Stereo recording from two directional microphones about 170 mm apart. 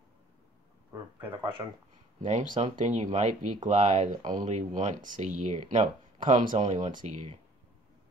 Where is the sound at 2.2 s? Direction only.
45° right (ahead or behind).